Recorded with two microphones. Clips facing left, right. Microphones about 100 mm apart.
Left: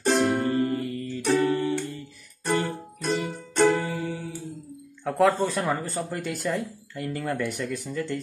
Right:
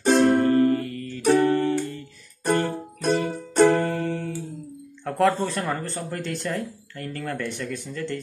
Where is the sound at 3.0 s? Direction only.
50° right (ahead or behind).